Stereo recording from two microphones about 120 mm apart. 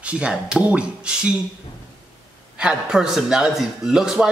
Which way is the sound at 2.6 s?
5° right (ahead or behind).